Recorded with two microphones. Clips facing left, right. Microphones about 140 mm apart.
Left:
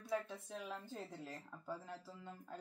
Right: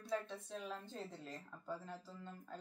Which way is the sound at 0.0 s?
10° left (ahead or behind).